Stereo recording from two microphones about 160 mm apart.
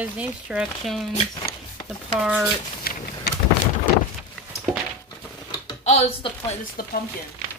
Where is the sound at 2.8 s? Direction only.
70° left (ahead or behind).